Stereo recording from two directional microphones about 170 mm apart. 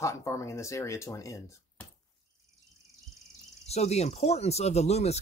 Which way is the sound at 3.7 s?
40° left (ahead or behind).